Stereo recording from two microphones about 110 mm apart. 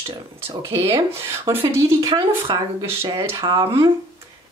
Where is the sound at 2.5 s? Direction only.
40° right (ahead or behind).